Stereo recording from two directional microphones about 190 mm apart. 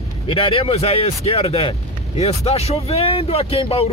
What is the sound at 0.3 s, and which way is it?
Speech, 30° left (ahead or behind).